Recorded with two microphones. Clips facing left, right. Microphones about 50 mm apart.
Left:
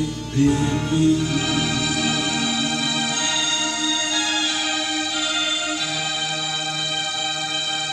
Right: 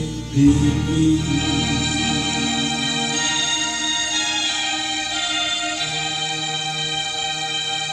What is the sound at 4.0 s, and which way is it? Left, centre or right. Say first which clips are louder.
Music: left 1 dB; left.